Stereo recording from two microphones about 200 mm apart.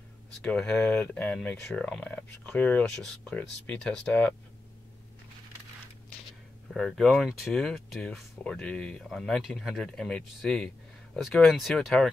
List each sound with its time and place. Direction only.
0.4 s speech: 5° left (ahead or behind)
6.7 s speech: centre (ahead or behind)